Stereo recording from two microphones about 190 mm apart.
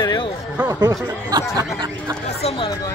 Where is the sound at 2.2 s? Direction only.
30° left (ahead or behind).